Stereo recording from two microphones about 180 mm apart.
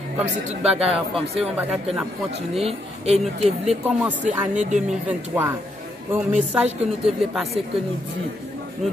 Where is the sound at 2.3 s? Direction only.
35° right (ahead or behind).